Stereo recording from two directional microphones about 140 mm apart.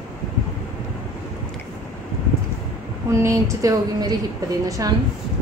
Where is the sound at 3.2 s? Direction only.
20° right (ahead or behind).